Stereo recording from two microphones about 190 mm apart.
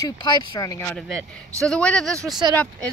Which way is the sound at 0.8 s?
5° left (ahead or behind).